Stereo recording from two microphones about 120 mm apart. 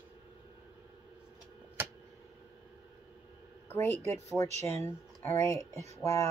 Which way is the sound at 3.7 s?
20° left (ahead or behind).